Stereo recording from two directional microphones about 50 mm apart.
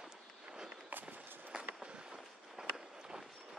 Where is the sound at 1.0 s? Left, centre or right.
Right.